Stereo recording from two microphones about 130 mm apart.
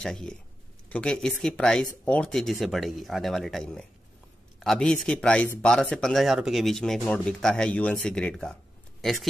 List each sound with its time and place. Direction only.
0.0 s speech: 5° left (ahead or behind)